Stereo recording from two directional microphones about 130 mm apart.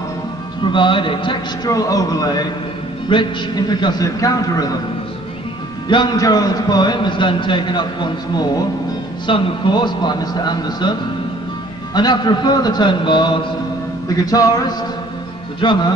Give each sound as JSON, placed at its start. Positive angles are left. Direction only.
{"t": 0.7, "sound": "a man's voice", "side_deg": 40}
{"t": 1.7, "sound": "music", "side_deg": 25}
{"t": 3.1, "sound": "a man's voice", "side_deg": 35}
{"t": 5.9, "sound": "a man's voice", "side_deg": 35}
{"t": 14.0, "sound": "music", "side_deg": 30}
{"t": 15.6, "sound": "a man's voice", "side_deg": 35}